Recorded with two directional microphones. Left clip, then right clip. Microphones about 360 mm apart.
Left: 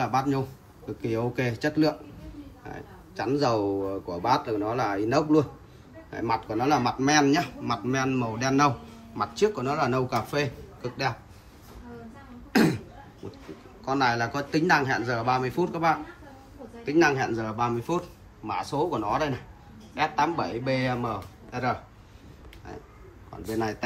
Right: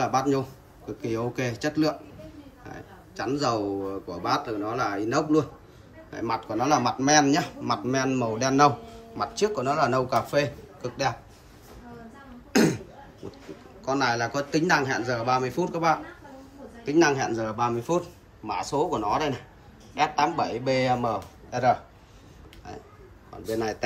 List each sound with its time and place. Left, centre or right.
0.0 s speech: centre
12.5 s cough: centre
13.8 s speech: centre